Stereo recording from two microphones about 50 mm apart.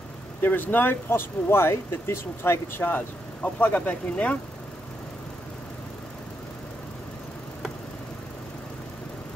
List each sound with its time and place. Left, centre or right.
0.4 s speech: left
3.4 s speech: left